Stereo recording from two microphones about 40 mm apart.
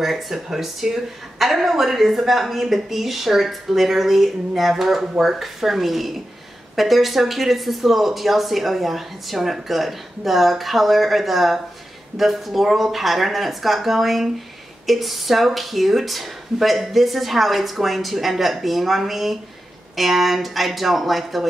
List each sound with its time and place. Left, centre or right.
0.0 s a woman's voice: centre